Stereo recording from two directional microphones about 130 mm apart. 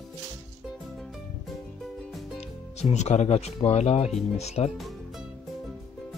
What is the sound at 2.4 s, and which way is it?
Speech, 60° left (ahead or behind).